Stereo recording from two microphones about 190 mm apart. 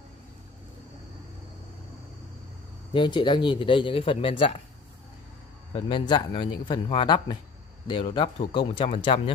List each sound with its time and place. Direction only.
2.9 s speech: 25° left (ahead or behind)
5.7 s speech: 25° left (ahead or behind)